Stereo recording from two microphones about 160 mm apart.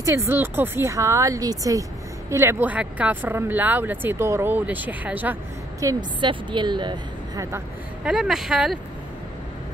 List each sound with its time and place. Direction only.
0.0 s speech: 15° right (ahead or behind)
8.0 s speech: 5° right (ahead or behind)